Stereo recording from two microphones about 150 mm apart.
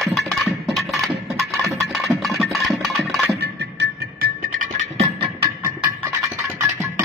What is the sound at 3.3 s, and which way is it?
Music, 90° right.